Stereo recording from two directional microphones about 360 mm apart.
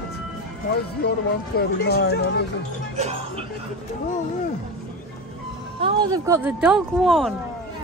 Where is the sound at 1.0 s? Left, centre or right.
Left.